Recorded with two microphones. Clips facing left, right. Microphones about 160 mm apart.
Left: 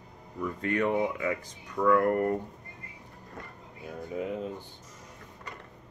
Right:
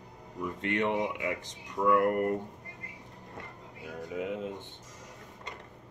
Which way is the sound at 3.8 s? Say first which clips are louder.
Left 1 dB; 40° left (ahead or behind).